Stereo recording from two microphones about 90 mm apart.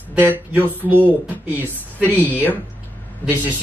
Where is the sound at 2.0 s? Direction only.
20° left (ahead or behind).